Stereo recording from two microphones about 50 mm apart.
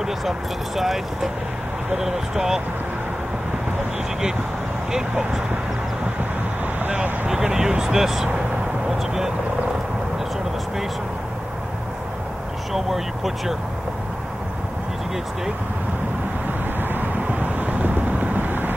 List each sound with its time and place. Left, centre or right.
0.0 s speech: centre
7.2 s speech: centre
12.7 s speech: centre
16.9 s vehicle: right